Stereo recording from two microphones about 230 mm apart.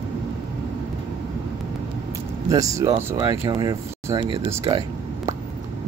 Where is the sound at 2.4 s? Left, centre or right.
Centre.